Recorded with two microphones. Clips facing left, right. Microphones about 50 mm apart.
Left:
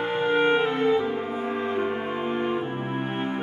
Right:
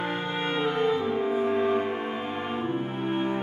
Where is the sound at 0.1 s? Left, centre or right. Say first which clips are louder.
Left 8 dB; centre.